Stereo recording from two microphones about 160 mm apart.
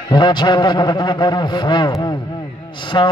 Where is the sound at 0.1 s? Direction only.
30° left (ahead or behind).